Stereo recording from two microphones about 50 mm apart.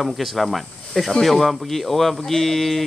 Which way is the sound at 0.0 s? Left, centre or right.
Centre.